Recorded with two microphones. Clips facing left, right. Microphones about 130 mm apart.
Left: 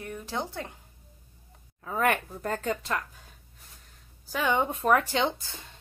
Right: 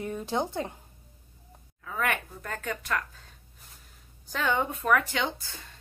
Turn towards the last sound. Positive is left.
turn(degrees=25)  # may be behind; listen again after turning